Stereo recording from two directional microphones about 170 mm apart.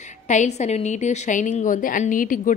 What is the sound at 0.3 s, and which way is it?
A woman's voice, 45° left (ahead or behind).